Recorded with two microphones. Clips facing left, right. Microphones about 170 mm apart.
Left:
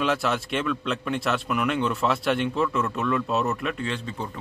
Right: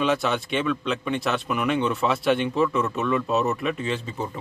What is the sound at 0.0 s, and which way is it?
Speech, centre (ahead or behind).